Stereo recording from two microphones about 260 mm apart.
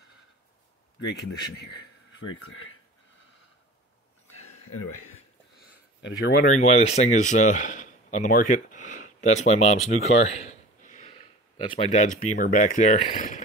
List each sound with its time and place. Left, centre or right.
2.2 s speech: left
5.6 s speech: left